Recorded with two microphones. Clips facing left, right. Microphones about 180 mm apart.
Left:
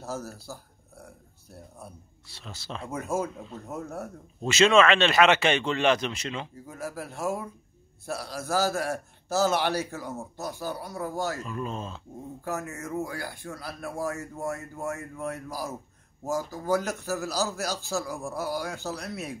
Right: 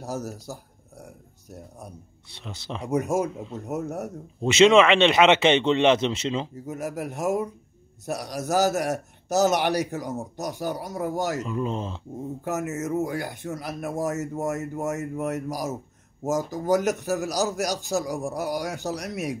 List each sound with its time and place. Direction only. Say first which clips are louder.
0.0 s a man's voice: right 4 dB; 15° right (ahead or behind)